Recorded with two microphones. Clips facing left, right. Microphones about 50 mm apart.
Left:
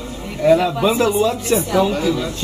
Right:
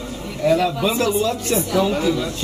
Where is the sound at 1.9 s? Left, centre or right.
Centre.